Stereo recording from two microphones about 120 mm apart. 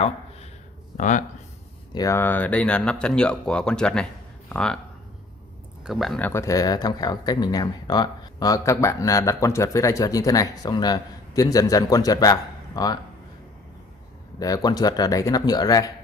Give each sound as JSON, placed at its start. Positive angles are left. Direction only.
{"t": 0.9, "sound": "speech", "side_deg": 90}
{"t": 2.0, "sound": "speech", "side_deg": 25}
{"t": 5.9, "sound": "speech", "side_deg": 0}
{"t": 6.2, "sound": "speech", "side_deg": 25}
{"t": 14.4, "sound": "speech", "side_deg": 30}